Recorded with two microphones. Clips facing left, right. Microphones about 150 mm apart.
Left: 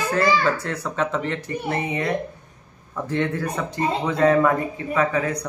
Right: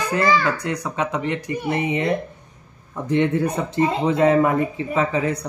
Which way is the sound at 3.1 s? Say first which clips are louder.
Right 5 dB; 20° right (ahead or behind).